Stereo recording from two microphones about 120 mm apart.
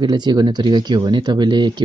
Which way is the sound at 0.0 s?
35° right (ahead or behind).